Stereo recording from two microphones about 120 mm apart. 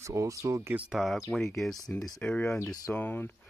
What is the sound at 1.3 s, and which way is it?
Speech, 15° left (ahead or behind).